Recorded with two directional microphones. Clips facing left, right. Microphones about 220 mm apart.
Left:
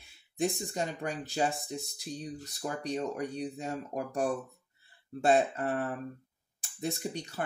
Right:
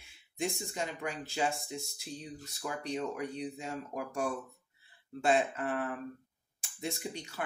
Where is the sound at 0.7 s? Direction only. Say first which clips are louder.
Left 3 dB; 35° left (ahead or behind).